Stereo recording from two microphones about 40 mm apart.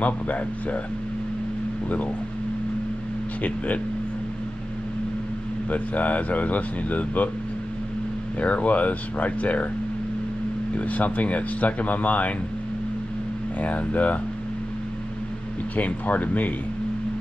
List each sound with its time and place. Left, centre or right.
0.0 s speech: left
3.4 s speech: left
5.7 s speech: left
8.4 s speech: left
10.8 s speech: left
13.6 s speech: left
15.7 s speech: left